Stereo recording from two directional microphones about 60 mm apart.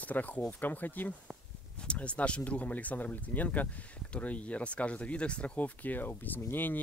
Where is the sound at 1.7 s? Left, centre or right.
Centre.